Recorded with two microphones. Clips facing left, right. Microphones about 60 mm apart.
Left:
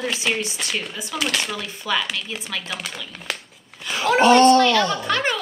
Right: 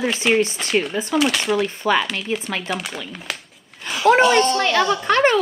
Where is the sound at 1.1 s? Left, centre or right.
Centre.